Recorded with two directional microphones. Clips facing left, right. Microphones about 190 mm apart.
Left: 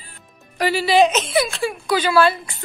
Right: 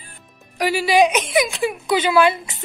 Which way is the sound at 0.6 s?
15° right (ahead or behind).